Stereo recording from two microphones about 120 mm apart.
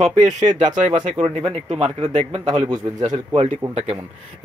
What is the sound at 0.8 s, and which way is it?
Speech, 90° right.